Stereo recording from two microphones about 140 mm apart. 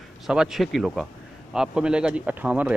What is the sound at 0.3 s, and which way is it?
Speech, 5° right (ahead or behind).